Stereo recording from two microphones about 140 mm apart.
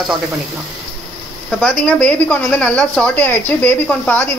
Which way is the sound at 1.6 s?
5° left (ahead or behind).